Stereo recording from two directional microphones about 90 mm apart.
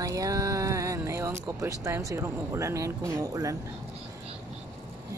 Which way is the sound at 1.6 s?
35° right (ahead or behind).